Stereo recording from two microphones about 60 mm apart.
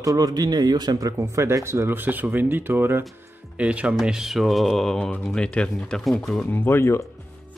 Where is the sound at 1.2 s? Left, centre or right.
Right.